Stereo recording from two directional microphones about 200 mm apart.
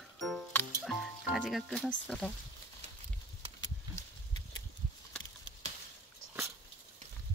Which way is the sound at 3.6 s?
20° left (ahead or behind).